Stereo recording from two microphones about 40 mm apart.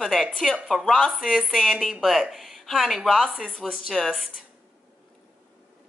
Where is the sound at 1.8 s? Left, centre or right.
Centre.